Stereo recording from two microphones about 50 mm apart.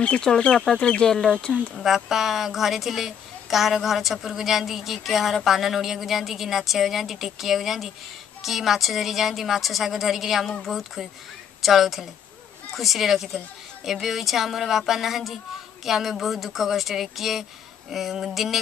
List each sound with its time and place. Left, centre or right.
0.3 s a woman's voice: centre
0.7 s speech: centre
1.1 s a woman's voice: centre